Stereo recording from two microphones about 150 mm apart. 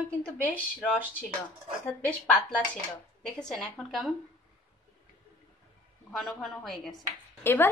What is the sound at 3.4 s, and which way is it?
Speech, centre (ahead or behind).